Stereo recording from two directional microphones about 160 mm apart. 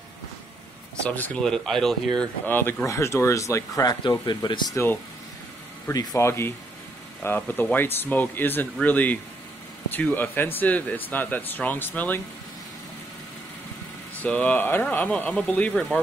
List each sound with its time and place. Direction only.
1.0 s speech: 10° left (ahead or behind)
2.4 s speech: 10° left (ahead or behind)
14.2 s speech: 10° left (ahead or behind)